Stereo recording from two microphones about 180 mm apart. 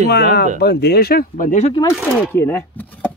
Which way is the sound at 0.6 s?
65° left (ahead or behind).